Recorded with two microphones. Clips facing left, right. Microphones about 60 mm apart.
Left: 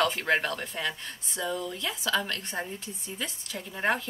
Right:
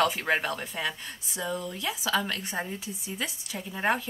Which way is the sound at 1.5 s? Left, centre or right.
Centre.